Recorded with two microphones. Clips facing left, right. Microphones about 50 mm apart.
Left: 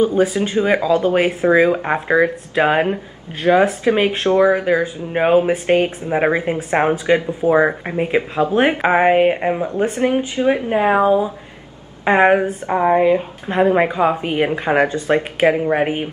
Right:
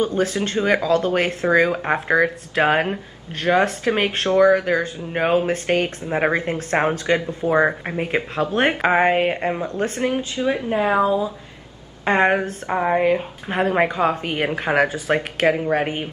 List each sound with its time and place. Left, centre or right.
0.0 s speech: centre; by 11.3 s left
12.0 s speech: centre
15.4 s speech: centre